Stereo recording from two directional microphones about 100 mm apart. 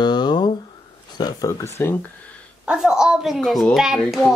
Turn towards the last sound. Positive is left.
turn(degrees=0)  # may be behind; listen again after turning